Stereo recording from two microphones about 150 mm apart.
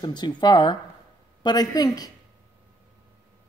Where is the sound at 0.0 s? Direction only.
30° left (ahead or behind).